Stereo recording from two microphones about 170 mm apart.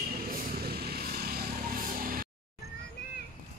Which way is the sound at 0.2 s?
55° right (ahead or behind).